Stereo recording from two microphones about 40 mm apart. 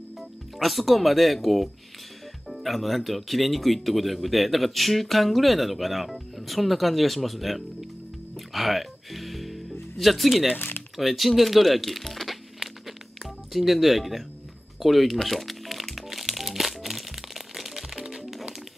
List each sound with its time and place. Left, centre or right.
0.2 s speech: centre
8.4 s music: centre
11.0 s speech: centre
12.5 s music: centre
14.8 s speech: centre
15.2 s music: centre
17.9 s music: centre